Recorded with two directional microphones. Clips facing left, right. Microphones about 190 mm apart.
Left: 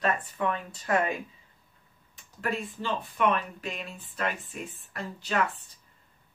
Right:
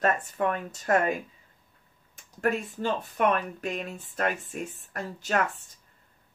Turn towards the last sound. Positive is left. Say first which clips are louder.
# right 1 dB
turn(degrees=-45)  # may be behind; listen again after turning